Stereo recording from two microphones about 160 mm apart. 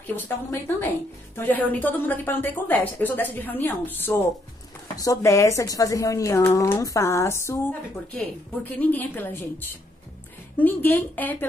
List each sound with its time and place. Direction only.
0.0 s a woman's voice: 15° left (ahead or behind)
10.6 s a woman's voice: 10° left (ahead or behind)